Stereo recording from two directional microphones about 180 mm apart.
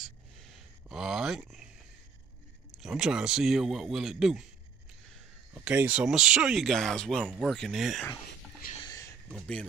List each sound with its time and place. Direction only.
0.8 s speech: 5° right (ahead or behind)
2.8 s speech: 5° right (ahead or behind)
5.5 s speech: 5° right (ahead or behind)
8.8 s a sound: 20° left (ahead or behind)
9.3 s speech: 5° left (ahead or behind)